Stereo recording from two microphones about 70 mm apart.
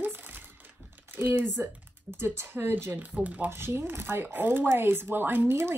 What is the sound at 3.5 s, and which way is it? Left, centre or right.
Speech, right.